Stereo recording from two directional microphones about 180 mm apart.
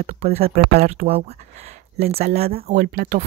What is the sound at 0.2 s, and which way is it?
Speech, 35° right (ahead or behind).